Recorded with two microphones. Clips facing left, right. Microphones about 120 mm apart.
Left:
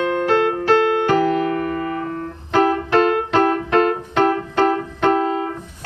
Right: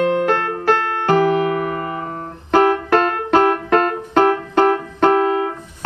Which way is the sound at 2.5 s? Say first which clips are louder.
Right 2 dB; 45° right (ahead or behind).